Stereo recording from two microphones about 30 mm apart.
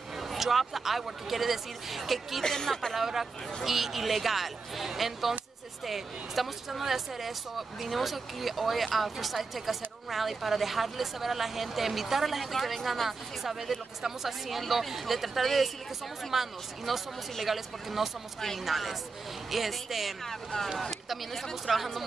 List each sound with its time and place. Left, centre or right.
0.2 s speech: centre
2.4 s speech: centre
3.6 s speech: centre
20.2 s speech: centre
20.9 s speech: centre